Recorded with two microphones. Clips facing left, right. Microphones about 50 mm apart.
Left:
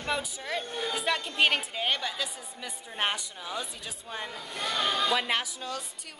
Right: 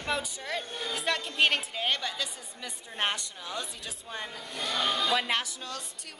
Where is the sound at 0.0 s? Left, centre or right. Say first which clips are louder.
Even; centre.